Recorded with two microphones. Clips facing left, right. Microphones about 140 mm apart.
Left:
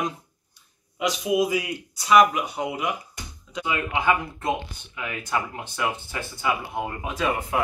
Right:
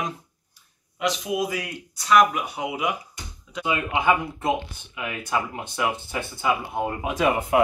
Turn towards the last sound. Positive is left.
turn(degrees=-20)  # may be behind; listen again after turning